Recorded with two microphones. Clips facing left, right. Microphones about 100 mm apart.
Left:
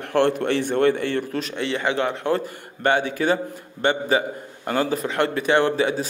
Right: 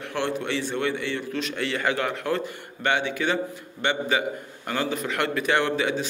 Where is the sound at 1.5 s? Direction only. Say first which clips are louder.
Left 2 dB; 25° left (ahead or behind).